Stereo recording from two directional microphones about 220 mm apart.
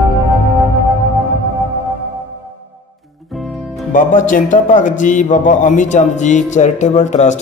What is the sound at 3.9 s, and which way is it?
A man's voice, 35° left (ahead or behind).